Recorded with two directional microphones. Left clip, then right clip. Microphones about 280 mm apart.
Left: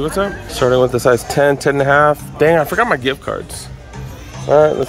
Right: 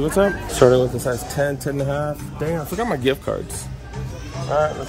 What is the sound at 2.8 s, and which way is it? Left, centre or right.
Speech, centre.